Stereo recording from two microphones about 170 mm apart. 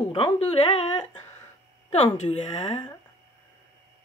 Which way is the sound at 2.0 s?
40° left (ahead or behind).